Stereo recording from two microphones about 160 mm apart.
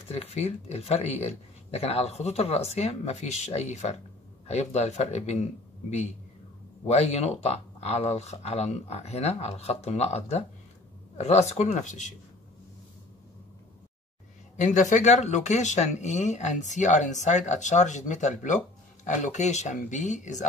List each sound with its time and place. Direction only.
0.1 s speech: 40° left (ahead or behind)
14.6 s speech: 50° left (ahead or behind)